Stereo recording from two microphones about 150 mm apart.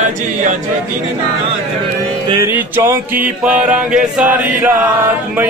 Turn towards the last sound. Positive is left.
turn(degrees=-10)  # may be behind; listen again after turning